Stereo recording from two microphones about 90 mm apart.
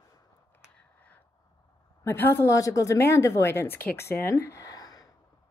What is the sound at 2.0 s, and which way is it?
A woman's voice, 30° left (ahead or behind).